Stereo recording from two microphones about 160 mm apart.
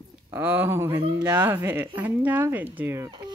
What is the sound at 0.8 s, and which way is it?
Speech, 30° right (ahead or behind).